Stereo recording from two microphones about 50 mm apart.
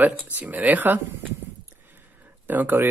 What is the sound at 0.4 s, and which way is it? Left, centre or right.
Speech, right.